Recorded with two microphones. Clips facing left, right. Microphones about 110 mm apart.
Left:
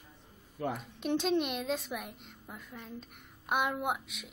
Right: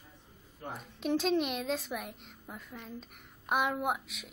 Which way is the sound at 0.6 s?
90° left.